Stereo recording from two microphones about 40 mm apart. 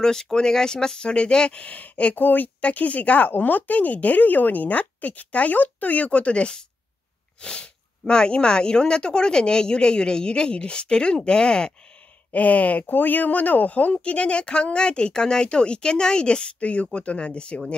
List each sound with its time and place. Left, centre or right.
0.0 s speech: centre
1.7 s speech: left
2.1 s speech: left
3.3 s a woman's voice: left; by 11.7 s centre
12.3 s speech: left
14.0 s a woman's voice: left